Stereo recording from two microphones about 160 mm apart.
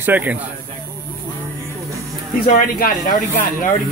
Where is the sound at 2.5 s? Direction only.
65° left (ahead or behind).